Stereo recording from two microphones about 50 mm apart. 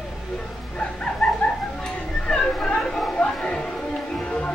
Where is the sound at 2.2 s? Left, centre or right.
Centre.